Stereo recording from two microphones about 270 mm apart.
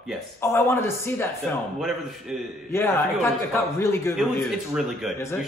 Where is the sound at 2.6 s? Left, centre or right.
Centre.